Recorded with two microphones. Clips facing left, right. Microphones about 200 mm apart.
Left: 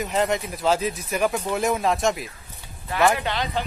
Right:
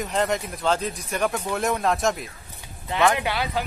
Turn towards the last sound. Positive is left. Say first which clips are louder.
# even
turn(degrees=-10)  # may be behind; listen again after turning